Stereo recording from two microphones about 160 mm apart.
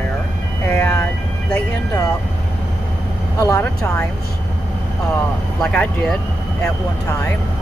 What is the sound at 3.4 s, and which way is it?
Speech, 20° left (ahead or behind).